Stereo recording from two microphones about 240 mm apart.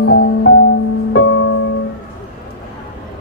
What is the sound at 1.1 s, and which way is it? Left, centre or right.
Music, left.